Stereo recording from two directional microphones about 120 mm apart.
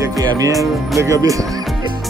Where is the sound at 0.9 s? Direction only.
25° right (ahead or behind).